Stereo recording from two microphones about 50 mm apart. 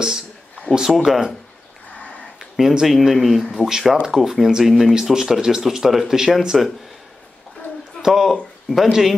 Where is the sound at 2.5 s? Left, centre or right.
Centre.